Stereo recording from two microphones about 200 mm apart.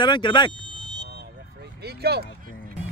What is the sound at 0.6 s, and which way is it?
Vehicle, 20° right (ahead or behind).